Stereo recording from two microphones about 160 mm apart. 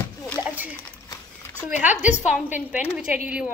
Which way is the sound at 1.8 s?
10° right (ahead or behind).